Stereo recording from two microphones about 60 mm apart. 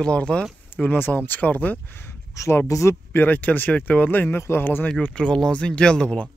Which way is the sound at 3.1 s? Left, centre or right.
Left.